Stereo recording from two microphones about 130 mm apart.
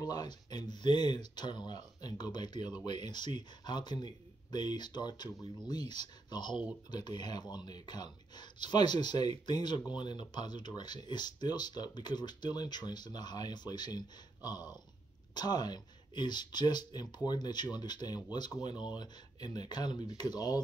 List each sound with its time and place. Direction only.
0.0 s speech: 30° left (ahead or behind)